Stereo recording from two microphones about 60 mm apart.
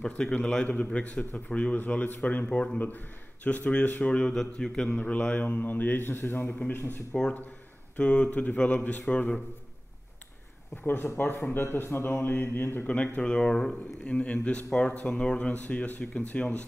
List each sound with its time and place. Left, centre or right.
0.0 s speech: centre
4.1 s speech: centre
4.9 s speech: left
5.5 s speech: left
6.6 s speech: centre
10.8 s speech: left
12.8 s speech: left